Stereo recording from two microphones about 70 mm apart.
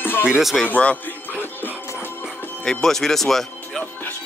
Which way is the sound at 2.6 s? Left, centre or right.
Centre.